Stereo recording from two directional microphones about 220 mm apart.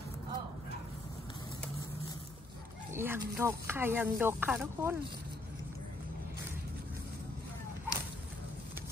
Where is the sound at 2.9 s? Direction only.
10° right (ahead or behind).